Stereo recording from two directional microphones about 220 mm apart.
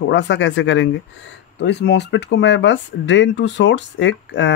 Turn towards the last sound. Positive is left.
turn(degrees=55)  # may be behind; listen again after turning